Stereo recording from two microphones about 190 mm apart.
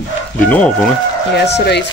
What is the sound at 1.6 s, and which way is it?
Speech, 60° left (ahead or behind).